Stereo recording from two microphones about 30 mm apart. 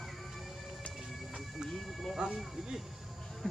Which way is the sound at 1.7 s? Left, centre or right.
Centre.